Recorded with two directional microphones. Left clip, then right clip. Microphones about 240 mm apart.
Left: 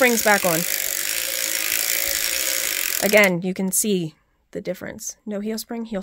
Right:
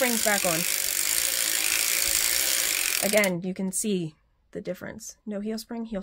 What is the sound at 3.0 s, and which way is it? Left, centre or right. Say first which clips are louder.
Speech: left 9 dB; left.